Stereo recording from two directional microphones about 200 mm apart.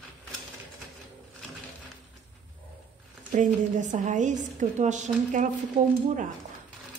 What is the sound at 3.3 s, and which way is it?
A woman's voice, 40° right (ahead or behind).